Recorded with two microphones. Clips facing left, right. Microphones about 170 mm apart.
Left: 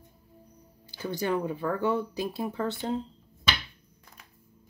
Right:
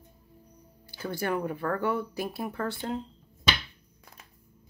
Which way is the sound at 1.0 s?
20° left (ahead or behind).